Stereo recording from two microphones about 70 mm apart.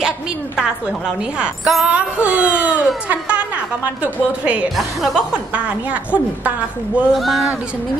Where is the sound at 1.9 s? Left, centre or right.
Centre.